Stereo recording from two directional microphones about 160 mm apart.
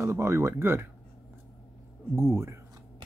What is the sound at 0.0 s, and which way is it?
Speech, 15° right (ahead or behind).